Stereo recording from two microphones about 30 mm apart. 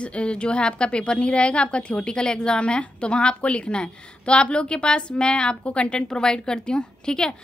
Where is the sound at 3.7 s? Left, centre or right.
Left.